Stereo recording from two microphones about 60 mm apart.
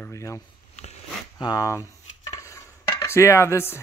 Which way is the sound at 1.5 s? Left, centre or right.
Left.